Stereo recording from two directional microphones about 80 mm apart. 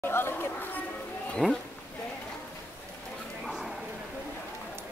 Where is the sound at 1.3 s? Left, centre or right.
Centre.